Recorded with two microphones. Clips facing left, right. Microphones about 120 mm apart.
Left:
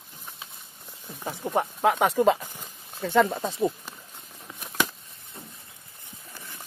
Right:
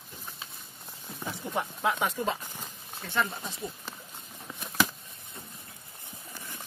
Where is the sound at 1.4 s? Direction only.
50° left (ahead or behind).